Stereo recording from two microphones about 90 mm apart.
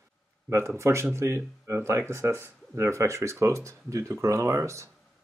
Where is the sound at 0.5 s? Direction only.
30° right (ahead or behind).